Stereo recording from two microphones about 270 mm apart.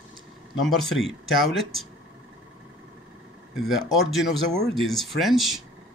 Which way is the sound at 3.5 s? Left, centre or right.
Centre.